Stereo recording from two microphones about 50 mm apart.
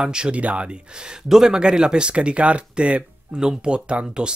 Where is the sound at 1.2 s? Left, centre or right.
Centre.